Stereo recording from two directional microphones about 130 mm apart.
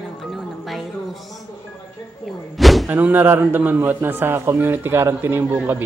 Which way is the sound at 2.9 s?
15° right (ahead or behind).